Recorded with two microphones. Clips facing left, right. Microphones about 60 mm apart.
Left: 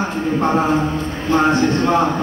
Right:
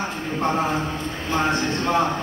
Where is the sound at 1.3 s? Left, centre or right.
Left.